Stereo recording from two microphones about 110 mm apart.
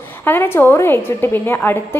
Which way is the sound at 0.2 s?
20° left (ahead or behind).